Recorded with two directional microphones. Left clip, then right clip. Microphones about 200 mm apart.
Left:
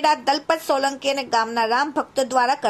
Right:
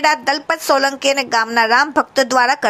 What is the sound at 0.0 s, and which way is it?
A woman's voice, 15° right (ahead or behind).